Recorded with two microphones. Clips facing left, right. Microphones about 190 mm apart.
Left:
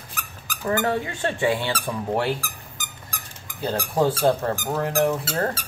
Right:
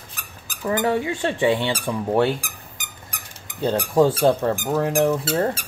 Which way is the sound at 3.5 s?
20° right (ahead or behind).